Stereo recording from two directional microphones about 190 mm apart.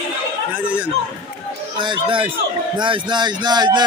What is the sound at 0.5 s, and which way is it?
Speech, 5° right (ahead or behind).